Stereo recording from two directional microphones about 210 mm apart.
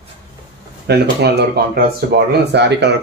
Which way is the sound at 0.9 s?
50° right (ahead or behind).